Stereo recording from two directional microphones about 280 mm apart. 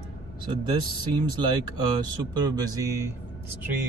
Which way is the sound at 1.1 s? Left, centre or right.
Centre.